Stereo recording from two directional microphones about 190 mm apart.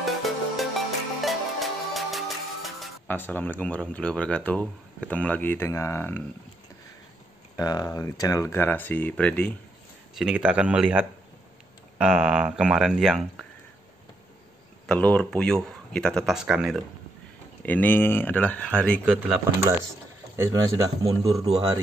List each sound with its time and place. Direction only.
0.0 s music: centre (ahead or behind)
3.2 s speech: 10° left (ahead or behind)
7.5 s speech: 20° left (ahead or behind)
10.1 s speech: 5° right (ahead or behind)
14.9 s speech: 5° left (ahead or behind)
17.6 s speech: 10° left (ahead or behind)
19.0 s speech: 10° right (ahead or behind)